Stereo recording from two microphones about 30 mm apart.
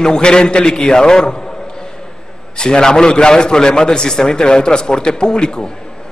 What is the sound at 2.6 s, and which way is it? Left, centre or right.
A man's voice, left.